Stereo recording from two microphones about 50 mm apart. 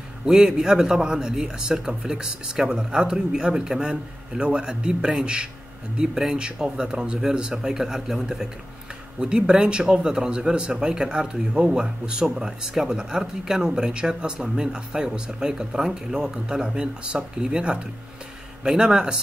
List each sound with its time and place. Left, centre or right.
0.2 s speech: centre